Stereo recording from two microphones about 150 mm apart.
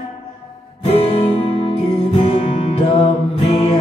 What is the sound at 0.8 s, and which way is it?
Music, 40° left (ahead or behind).